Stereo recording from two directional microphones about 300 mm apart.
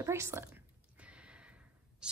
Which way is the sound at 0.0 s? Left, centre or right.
Centre.